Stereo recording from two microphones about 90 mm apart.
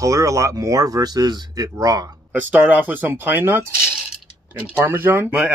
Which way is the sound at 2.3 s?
20° right (ahead or behind).